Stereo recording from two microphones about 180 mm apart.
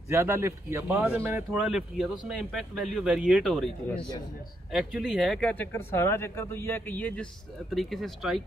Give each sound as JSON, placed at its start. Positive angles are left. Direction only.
{"t": 0.1, "sound": "speech", "side_deg": -15}